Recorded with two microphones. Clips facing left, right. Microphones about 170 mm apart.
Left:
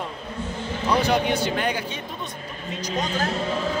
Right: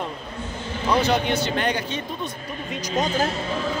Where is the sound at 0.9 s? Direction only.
10° left (ahead or behind).